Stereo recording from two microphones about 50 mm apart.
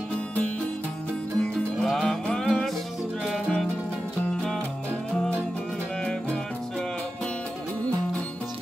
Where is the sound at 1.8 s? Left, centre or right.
Centre.